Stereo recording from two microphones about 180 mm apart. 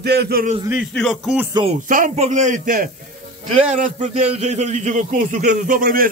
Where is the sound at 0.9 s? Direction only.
Centre (ahead or behind).